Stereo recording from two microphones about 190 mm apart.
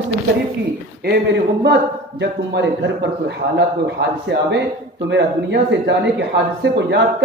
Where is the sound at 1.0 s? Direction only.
60° right (ahead or behind).